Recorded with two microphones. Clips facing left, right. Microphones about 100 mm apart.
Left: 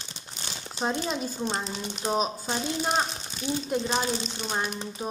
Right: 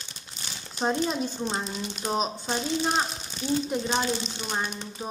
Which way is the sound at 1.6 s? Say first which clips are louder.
Left 1 dB; 20° left (ahead or behind).